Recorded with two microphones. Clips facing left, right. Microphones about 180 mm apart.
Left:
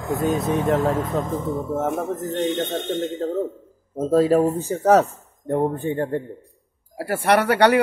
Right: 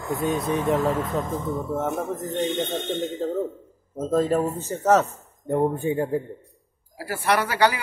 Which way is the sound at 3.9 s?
5° left (ahead or behind).